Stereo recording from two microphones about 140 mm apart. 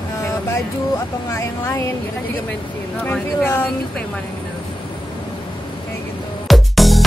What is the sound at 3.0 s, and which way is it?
Speech, 10° left (ahead or behind).